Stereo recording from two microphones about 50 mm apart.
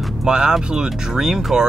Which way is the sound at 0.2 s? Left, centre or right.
Centre.